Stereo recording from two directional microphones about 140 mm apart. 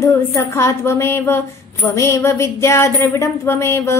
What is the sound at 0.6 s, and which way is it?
Speech, 20° left (ahead or behind).